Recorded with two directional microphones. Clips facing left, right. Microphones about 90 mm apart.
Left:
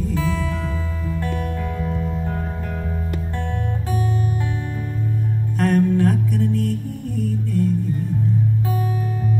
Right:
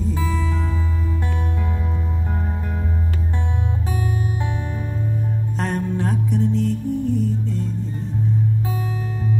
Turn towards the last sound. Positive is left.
turn(degrees=-20)  # may be behind; listen again after turning